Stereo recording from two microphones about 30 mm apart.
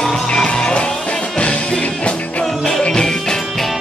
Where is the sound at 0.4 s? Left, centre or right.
Left.